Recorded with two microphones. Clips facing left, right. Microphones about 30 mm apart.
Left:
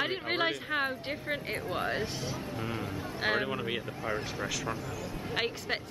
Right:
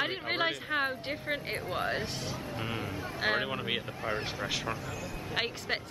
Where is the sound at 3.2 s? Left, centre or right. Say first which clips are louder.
Even; centre.